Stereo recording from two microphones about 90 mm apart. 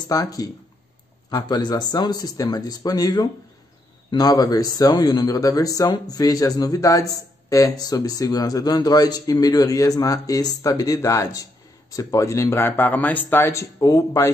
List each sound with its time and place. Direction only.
0.1 s speech: 40° left (ahead or behind)